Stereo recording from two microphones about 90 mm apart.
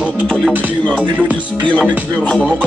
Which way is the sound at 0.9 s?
15° right (ahead or behind).